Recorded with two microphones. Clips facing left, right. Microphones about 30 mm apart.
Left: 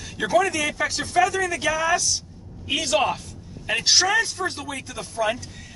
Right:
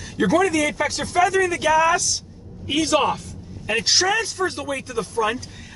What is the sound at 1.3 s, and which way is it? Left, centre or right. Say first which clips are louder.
Speech: right 5 dB; centre.